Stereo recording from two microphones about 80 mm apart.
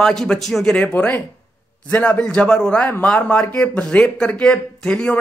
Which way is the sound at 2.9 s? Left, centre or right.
Left.